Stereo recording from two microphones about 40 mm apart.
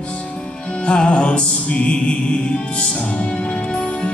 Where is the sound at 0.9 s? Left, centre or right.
Left.